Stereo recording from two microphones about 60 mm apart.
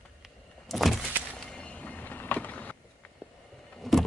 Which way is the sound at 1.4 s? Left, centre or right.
Centre.